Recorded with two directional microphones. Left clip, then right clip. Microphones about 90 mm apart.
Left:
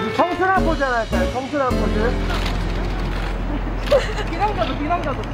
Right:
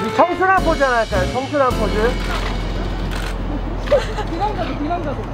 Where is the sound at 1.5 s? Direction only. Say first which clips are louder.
Right 5 dB; 90° right.